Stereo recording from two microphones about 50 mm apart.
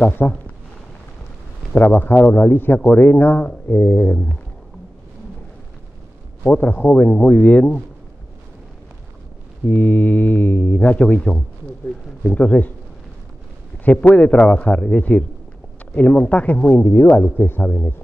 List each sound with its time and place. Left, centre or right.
0.0 s a man's voice: left
1.8 s a man's voice: left
6.4 s speech: left
9.7 s a man's voice: left
13.8 s a man's voice: left
16.8 s speech: left
17.4 s a man's voice: left